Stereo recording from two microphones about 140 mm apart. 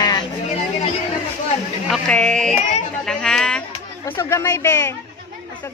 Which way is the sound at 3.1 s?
5° left (ahead or behind).